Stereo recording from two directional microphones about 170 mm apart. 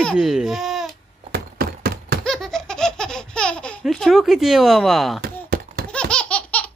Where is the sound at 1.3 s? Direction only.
65° right (ahead or behind).